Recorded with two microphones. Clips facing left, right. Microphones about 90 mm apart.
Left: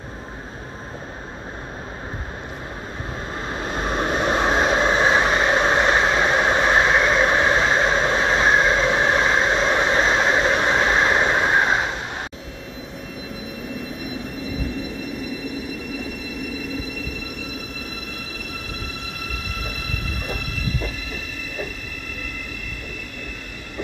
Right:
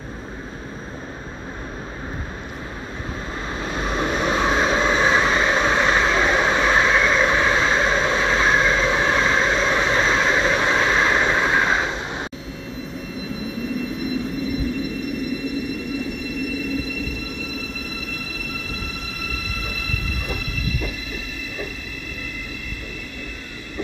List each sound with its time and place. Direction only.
3.5 s vehicle: 45° left (ahead or behind)